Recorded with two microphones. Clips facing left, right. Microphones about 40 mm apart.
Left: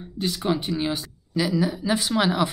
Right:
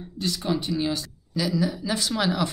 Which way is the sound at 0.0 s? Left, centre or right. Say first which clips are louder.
Left 3 dB; left.